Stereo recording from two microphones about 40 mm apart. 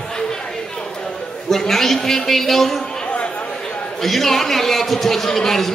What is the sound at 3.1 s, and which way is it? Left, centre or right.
Chatter, left.